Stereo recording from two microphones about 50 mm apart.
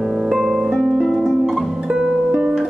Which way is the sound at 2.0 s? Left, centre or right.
Centre.